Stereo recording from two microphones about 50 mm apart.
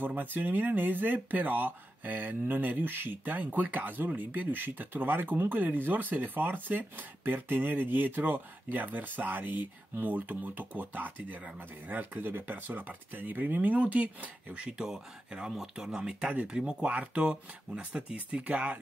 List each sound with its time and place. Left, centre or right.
0.0 s speech: right
15.5 s speech: centre; by 18.8 s right